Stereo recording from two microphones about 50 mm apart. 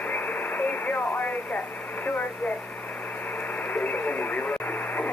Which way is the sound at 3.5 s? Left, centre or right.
Left.